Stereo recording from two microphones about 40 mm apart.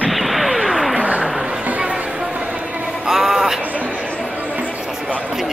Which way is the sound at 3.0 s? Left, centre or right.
Centre.